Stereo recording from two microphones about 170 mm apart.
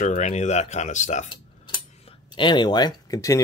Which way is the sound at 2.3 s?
25° left (ahead or behind).